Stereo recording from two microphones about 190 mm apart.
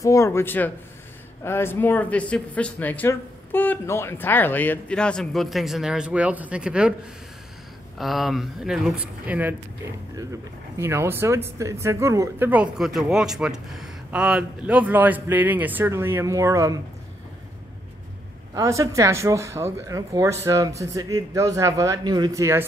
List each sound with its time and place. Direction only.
0.0 s speech: 15° left (ahead or behind); by 6.9 s 5° right (ahead or behind)
8.0 s speech: centre (ahead or behind)
10.8 s speech: 15° right (ahead or behind)
18.5 s speech: 15° right (ahead or behind)